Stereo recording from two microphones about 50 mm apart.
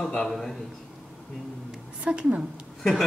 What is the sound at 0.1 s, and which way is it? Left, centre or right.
Speech, centre.